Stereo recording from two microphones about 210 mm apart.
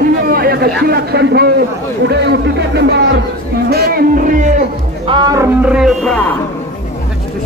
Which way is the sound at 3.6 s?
50° right (ahead or behind).